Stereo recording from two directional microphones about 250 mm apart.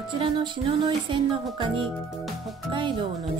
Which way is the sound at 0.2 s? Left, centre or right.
Centre.